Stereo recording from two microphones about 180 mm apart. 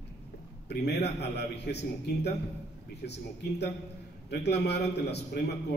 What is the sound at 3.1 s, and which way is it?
A man's voice, 65° left (ahead or behind).